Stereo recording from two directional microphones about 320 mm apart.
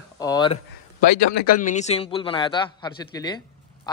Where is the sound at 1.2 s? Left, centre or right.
Left.